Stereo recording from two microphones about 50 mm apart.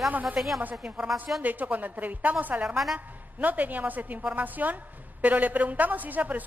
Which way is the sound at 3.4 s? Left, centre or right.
Right.